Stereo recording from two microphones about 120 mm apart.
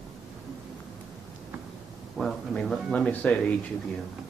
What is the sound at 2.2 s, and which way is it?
Speech, 5° left (ahead or behind).